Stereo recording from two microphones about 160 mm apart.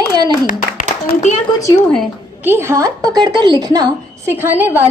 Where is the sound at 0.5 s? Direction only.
50° left (ahead or behind).